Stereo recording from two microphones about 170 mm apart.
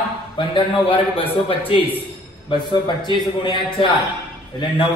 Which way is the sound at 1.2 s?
35° left (ahead or behind).